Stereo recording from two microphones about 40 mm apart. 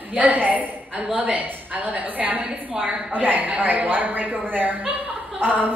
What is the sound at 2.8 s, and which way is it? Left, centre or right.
A woman's voice, right.